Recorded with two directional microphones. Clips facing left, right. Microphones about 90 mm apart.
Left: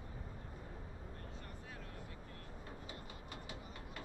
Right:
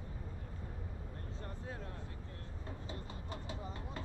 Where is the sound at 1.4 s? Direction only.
30° right (ahead or behind).